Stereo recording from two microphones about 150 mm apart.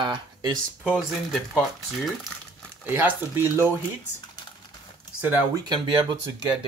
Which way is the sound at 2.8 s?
10° right (ahead or behind).